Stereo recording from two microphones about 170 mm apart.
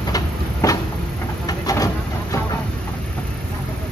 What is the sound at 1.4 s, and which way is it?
Vehicle, 20° left (ahead or behind).